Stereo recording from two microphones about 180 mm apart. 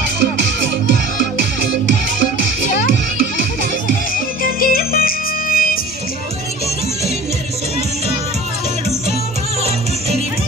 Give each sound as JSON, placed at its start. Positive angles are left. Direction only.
{"t": 0.2, "sound": "music", "side_deg": -85}
{"t": 4.4, "sound": "music", "side_deg": 55}